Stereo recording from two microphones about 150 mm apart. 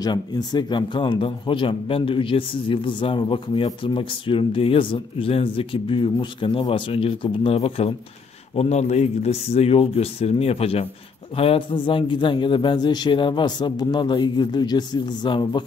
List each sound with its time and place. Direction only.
0.0 s speech: 25° left (ahead or behind)